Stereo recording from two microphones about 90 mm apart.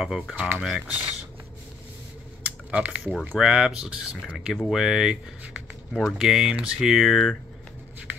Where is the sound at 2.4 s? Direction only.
15° right (ahead or behind).